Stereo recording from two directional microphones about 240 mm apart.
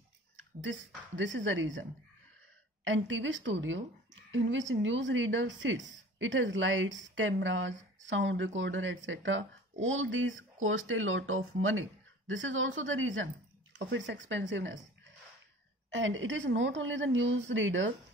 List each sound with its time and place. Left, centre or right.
0.6 s a woman's voice: right